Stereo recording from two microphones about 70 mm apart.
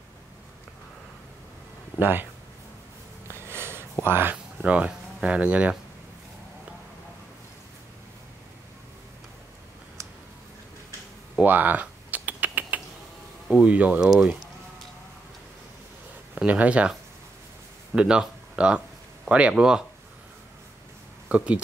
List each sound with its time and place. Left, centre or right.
2.0 s speech: right
3.3 s a sound: right
4.0 s speech: right
4.6 s speech: centre
11.4 s typing: right
13.6 s speech: centre
14.0 s speech: centre
16.3 s speech: centre
17.9 s speech: centre
21.3 s speech: centre